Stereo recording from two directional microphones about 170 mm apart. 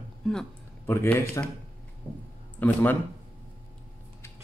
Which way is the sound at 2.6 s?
10° left (ahead or behind).